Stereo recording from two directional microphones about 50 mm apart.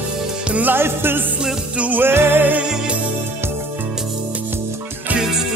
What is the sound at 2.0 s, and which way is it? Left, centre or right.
Music, right.